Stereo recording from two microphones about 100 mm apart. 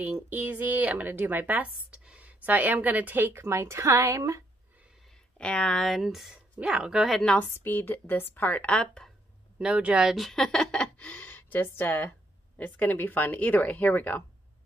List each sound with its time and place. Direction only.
0.0 s a woman's voice: 15° right (ahead or behind); by 4.5 s 30° right (ahead or behind)
5.4 s speech: 10° left (ahead or behind)
7.3 s speech: 20° left (ahead or behind)
9.6 s speech: 10° right (ahead or behind); by 14.2 s 20° left (ahead or behind)